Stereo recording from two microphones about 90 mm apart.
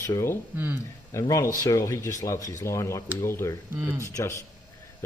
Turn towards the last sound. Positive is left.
turn(degrees=35)  # may be behind; listen again after turning